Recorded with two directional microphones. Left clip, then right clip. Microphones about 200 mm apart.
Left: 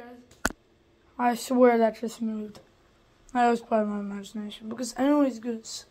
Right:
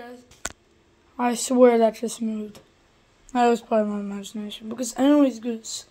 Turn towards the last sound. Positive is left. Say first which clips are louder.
# right 4 dB
turn(degrees=-15)  # may be behind; listen again after turning